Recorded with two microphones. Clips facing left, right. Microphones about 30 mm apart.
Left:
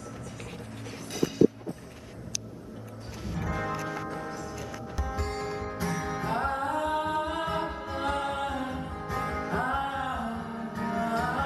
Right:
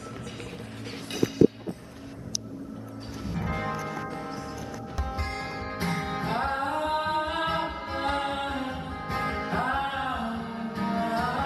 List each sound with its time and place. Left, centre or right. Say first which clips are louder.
3.3 s church bell: right 1 dB; right
5.0 s music: left 1 dB; right